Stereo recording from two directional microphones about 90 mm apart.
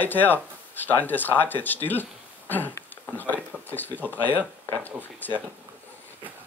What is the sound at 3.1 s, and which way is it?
Speech, 20° left (ahead or behind).